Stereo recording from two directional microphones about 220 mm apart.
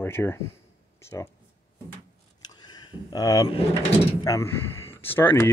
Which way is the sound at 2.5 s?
20° left (ahead or behind).